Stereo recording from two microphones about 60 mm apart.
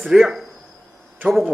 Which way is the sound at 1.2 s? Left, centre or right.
Right.